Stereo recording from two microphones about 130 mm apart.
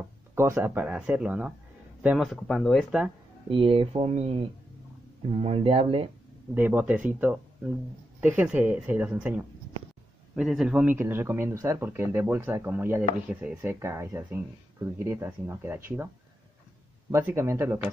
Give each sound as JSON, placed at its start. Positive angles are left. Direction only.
{"t": 0.6, "sound": "a man's voice", "side_deg": -10}
{"t": 3.4, "sound": "speech", "side_deg": -45}
{"t": 6.5, "sound": "speech", "side_deg": -15}
{"t": 17.1, "sound": "speech", "side_deg": -20}